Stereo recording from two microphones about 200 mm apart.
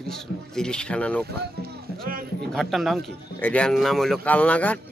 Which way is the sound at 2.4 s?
Centre (ahead or behind).